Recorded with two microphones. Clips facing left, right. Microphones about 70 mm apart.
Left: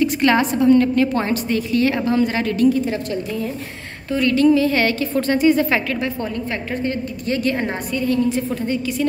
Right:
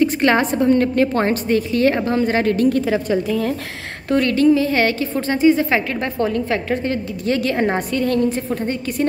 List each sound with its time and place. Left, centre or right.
0.0 s a woman's voice: right
4.2 s a woman's voice: right
6.1 s a woman's voice: right
7.2 s a woman's voice: right
8.3 s a woman's voice: right